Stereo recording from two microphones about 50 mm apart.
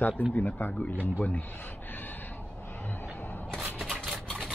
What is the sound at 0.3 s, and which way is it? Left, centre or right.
Speech, left.